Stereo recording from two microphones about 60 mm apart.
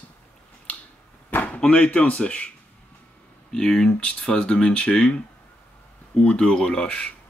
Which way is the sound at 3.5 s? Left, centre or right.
Centre.